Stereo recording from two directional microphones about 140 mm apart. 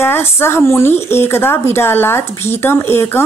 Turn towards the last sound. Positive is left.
turn(degrees=15)  # may be behind; listen again after turning